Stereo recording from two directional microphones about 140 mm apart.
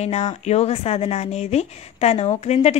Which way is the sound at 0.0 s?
50° left (ahead or behind).